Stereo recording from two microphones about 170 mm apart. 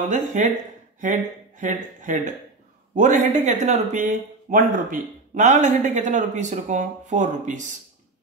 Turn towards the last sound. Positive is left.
turn(degrees=-45)  # may be behind; listen again after turning